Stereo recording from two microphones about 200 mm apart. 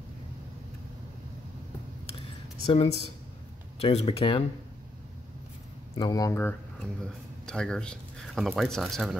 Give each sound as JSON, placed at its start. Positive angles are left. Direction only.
{"t": 2.1, "sound": "a sound", "side_deg": 30}
{"t": 3.8, "sound": "speech", "side_deg": 30}
{"t": 5.9, "sound": "speech", "side_deg": 20}
{"t": 7.0, "sound": "speech", "side_deg": 5}